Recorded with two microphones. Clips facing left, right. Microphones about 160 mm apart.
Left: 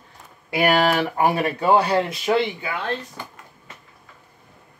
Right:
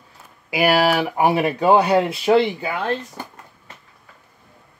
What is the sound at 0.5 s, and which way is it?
Speech, 5° right (ahead or behind).